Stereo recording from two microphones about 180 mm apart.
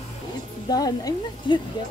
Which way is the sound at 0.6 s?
20° left (ahead or behind).